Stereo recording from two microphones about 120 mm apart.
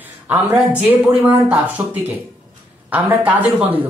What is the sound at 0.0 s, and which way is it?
Speech, 15° right (ahead or behind).